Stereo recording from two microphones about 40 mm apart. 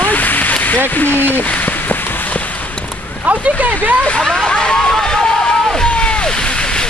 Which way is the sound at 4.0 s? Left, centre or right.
Left.